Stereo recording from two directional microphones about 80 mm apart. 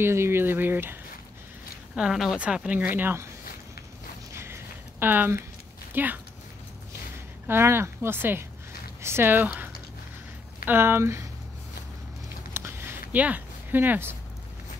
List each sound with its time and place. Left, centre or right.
0.0 s speech: right
2.0 s a woman's voice: centre; by 3.3 s right
4.3 s a sound: right
5.9 s speech: right
7.4 s speech: right
12.5 s a sound: right